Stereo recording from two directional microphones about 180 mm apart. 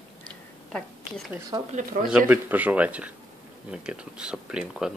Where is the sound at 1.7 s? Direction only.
50° right (ahead or behind).